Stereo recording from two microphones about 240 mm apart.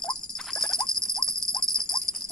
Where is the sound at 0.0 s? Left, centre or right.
Centre.